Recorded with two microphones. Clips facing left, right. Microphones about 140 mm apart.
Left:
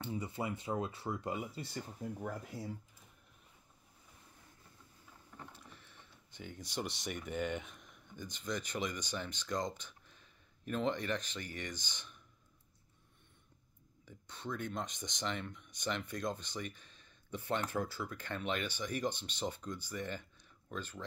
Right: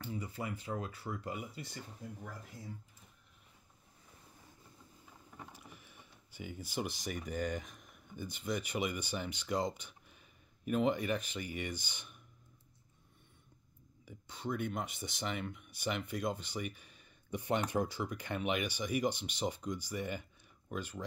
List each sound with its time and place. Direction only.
0.0 s speech: 25° left (ahead or behind)
2.2 s speech: 75° left (ahead or behind)
5.5 s speech: 10° right (ahead or behind)
14.0 s speech: 10° right (ahead or behind)